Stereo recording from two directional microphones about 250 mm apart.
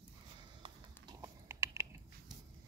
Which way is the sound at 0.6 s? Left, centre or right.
Centre.